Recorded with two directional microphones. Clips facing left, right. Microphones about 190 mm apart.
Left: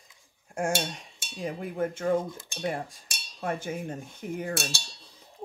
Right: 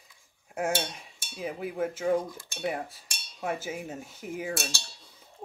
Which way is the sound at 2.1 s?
25° left (ahead or behind).